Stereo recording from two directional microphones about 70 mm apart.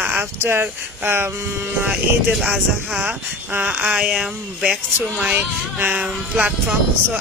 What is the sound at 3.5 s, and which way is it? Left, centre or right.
Speech, right.